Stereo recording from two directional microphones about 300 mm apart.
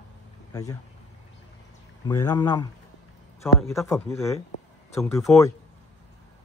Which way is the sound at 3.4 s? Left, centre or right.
Centre.